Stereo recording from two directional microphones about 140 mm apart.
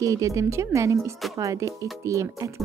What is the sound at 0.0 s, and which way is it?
Speech, 25° right (ahead or behind).